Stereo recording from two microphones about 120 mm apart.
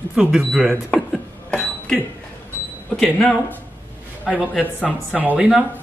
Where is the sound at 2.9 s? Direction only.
5° left (ahead or behind).